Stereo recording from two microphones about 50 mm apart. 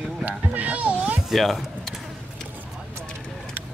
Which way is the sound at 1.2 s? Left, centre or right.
Centre.